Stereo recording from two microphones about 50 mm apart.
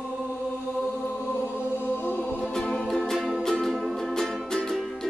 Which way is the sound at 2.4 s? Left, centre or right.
Centre.